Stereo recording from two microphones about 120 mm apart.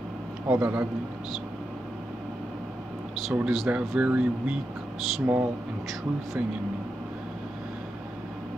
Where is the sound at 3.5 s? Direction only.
5° right (ahead or behind).